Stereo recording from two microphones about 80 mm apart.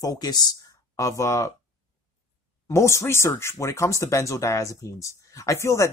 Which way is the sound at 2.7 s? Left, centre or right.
Left.